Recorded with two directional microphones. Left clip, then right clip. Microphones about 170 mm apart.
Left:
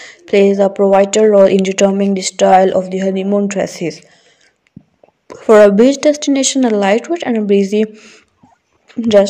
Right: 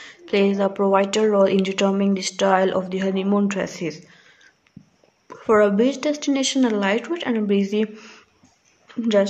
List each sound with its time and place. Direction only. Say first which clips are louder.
0.0 s a woman's voice: left 9 dB; 30° left (ahead or behind); by 3.5 s 10° left (ahead or behind)
3.5 s a woman's voice: left 8 dB; 25° left (ahead or behind)
5.3 s a woman's voice: left 10 dB; 30° left (ahead or behind)
7.9 s speech: left 3 dB; 15° left (ahead or behind)
9.0 s speech: left 9 dB; 30° left (ahead or behind)